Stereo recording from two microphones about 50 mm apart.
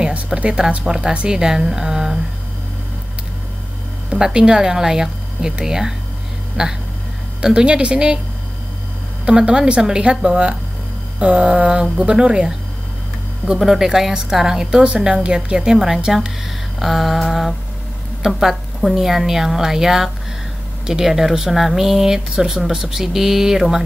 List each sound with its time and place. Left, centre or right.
0.1 s speech: right
4.1 s speech: centre
9.2 s speech: centre
16.8 s a sound: centre
18.2 s speech: centre